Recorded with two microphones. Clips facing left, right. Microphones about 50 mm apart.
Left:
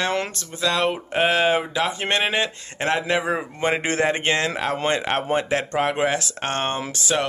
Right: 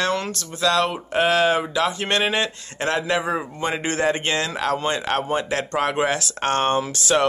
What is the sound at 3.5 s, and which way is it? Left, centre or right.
Speech, left.